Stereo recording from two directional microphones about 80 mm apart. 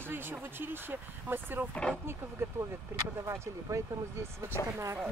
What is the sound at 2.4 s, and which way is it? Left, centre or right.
Speech, right.